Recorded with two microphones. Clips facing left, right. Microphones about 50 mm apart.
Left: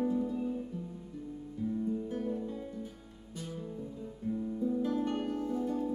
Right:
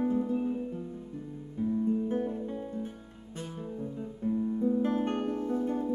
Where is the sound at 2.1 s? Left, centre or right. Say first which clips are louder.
Right 4 dB; right.